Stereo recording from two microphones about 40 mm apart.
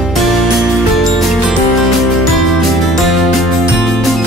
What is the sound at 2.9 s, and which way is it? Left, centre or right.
Music, centre.